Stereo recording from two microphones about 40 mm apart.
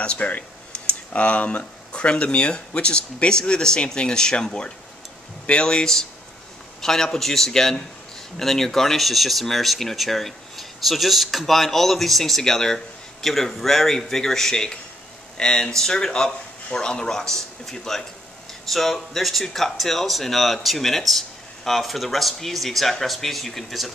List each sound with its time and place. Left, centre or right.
0.0 s speech: left
6.8 s speech: centre